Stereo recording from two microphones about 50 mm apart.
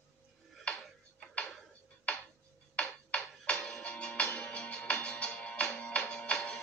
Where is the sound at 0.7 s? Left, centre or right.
Left.